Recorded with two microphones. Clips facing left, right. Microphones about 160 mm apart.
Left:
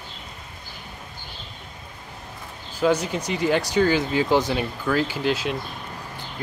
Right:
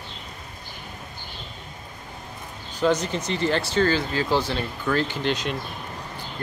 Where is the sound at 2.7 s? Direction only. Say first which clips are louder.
Left 1 dB; 10° left (ahead or behind).